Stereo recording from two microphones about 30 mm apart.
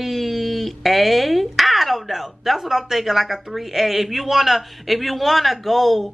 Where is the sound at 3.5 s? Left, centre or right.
Centre.